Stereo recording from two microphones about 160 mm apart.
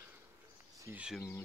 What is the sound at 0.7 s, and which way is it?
Insect, 15° right (ahead or behind).